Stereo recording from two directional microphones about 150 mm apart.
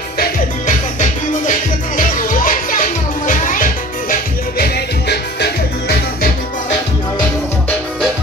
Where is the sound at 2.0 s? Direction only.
60° left (ahead or behind); by 6.3 s 90° left.